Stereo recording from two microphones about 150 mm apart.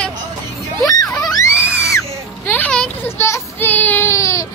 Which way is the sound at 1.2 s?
20° left (ahead or behind).